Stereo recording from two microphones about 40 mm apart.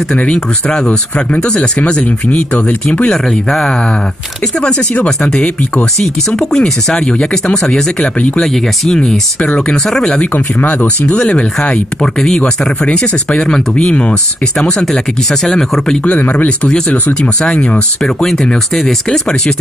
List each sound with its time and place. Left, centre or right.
0.3 s speech: left
3.3 s speech: centre
4.6 s speech: left
10.7 s speech: left; by 16.0 s centre
16.2 s speech: left
16.4 s speech: left
18.2 s speech: centre